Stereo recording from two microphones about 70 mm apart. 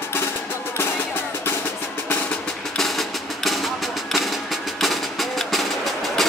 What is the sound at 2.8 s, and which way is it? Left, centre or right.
Music, centre.